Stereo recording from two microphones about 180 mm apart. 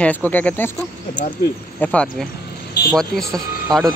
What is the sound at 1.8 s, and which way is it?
A man's voice, 5° left (ahead or behind).